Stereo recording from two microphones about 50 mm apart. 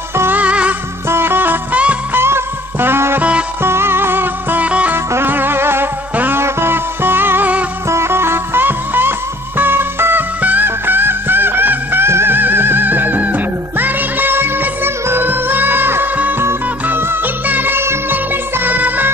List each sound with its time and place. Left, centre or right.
0.3 s music: right
1.0 s music: right
2.1 s music: right
3.2 s music: right
3.6 s music: right
4.6 s music: right
4.9 s music: right
7.9 s music: right
12.1 s music: right
12.4 s music: right